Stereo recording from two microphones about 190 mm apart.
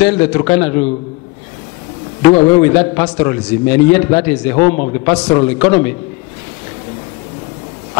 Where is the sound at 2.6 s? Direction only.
10° left (ahead or behind).